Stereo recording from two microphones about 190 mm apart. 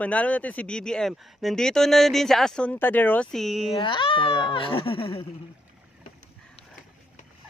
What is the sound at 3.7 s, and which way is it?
Speech, 25° left (ahead or behind).